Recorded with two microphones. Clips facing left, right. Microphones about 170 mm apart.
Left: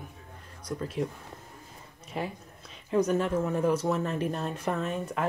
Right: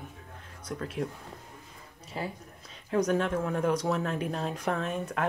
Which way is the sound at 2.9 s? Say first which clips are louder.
Left 1 dB; 5° left (ahead or behind).